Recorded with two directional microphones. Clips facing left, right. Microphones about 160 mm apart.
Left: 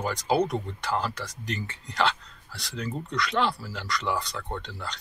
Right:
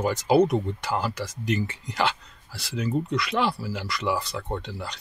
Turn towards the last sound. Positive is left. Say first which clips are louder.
# right 3 dB
turn(degrees=-10)  # may be behind; listen again after turning